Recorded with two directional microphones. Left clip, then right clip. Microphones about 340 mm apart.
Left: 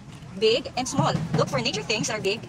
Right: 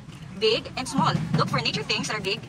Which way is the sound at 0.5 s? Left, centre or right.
Centre.